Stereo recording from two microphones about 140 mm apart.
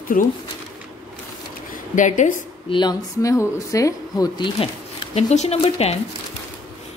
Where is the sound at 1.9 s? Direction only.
65° left (ahead or behind).